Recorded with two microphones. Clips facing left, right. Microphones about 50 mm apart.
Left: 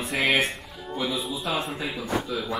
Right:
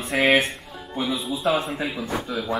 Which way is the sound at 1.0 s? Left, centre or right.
Centre.